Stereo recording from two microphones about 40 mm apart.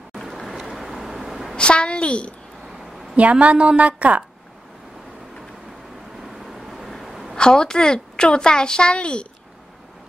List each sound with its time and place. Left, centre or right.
0.2 s vehicle: centre
1.6 s a woman's voice: left
2.6 s a sound: centre
3.2 s a woman's voice: right
6.2 s vehicle: centre
7.3 s a woman's voice: centre